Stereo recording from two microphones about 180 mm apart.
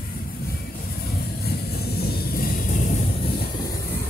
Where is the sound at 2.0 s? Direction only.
55° left (ahead or behind).